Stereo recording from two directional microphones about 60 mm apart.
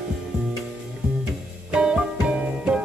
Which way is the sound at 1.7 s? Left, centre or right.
Centre.